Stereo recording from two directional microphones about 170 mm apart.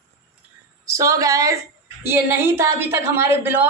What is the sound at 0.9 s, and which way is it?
A woman's voice, 20° right (ahead or behind).